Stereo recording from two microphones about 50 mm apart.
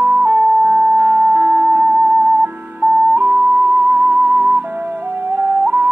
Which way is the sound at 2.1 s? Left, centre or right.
Right.